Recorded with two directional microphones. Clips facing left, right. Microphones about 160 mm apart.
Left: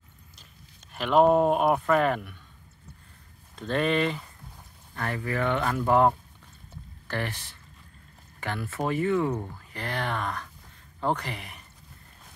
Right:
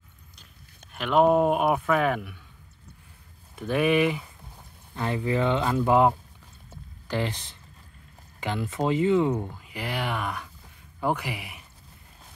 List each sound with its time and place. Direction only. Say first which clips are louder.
0.9 s speech: even; centre (ahead or behind)
3.5 s speech: right 3 dB; 10° right (ahead or behind)